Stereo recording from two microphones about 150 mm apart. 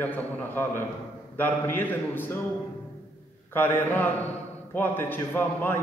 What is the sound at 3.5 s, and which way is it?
A man's voice, 15° left (ahead or behind).